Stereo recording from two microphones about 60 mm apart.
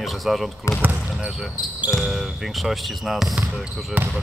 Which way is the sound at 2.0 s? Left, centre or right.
Centre.